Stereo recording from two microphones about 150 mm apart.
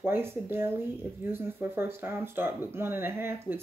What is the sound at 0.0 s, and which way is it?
Speech, 15° right (ahead or behind).